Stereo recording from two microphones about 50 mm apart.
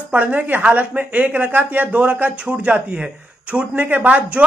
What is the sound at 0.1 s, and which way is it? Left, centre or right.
Speech, right.